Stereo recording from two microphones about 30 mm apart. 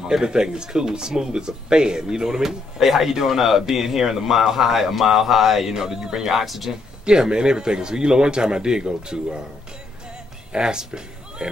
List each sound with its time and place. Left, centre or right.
0.2 s speech: right
6.2 s speech: centre
7.1 s speech: right
10.5 s speech: right